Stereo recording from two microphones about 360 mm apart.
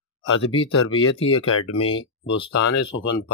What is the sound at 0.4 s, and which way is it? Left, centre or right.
Speech, centre.